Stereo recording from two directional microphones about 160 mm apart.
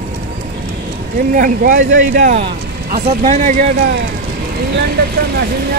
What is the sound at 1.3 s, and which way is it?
Speech, 60° right (ahead or behind).